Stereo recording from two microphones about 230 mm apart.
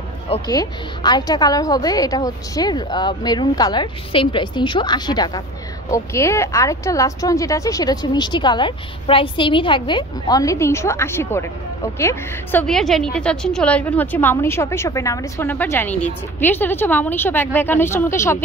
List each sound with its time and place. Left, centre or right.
0.3 s a woman's voice: centre